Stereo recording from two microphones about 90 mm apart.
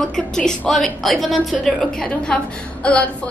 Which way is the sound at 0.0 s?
5° left (ahead or behind).